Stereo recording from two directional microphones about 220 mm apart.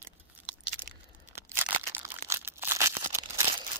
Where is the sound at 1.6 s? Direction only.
10° right (ahead or behind).